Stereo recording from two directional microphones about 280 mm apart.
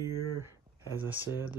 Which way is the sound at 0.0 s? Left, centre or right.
Centre.